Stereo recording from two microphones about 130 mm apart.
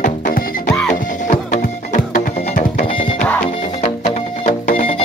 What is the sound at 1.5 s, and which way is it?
Music, 80° left.